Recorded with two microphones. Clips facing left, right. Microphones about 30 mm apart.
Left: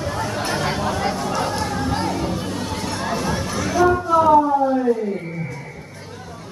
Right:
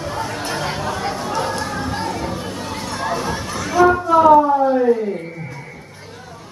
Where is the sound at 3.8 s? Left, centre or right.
Centre.